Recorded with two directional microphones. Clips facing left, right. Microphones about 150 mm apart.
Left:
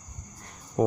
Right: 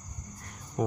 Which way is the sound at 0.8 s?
35° left (ahead or behind).